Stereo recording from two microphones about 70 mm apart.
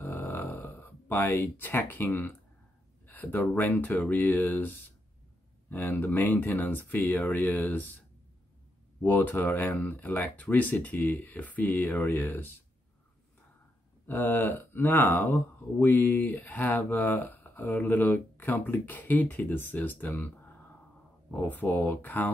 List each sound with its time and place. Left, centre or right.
0.0 s a sound: left
1.9 s speech: left
9.0 s speech: left
14.0 s speech: left
21.3 s speech: left